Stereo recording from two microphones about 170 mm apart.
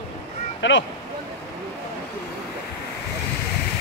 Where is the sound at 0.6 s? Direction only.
90° left.